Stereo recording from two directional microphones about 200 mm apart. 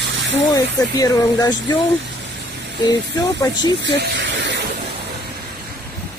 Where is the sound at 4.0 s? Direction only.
65° right (ahead or behind).